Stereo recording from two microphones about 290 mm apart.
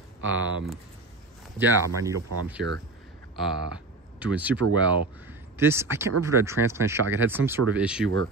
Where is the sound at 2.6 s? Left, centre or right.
Right.